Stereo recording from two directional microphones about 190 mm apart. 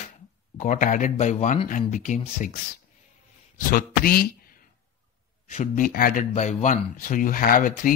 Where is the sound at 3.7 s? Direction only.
50° left (ahead or behind).